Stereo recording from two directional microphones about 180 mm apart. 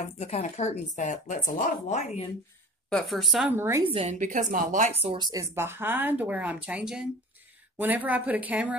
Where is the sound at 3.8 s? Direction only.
35° right (ahead or behind).